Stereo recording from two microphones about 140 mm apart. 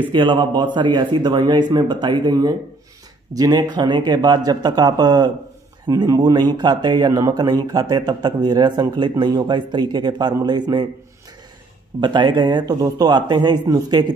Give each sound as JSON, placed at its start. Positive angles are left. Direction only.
{"t": 0.1, "sound": "a man's voice", "side_deg": -35}
{"t": 12.0, "sound": "a man's voice", "side_deg": -35}